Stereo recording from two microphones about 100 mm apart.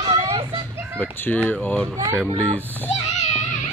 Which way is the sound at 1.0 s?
15° left (ahead or behind).